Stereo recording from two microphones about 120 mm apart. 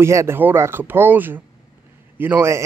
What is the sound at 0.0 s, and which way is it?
Speech, 25° right (ahead or behind).